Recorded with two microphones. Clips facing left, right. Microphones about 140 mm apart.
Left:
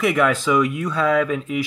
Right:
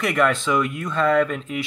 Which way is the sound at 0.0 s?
5° left (ahead or behind).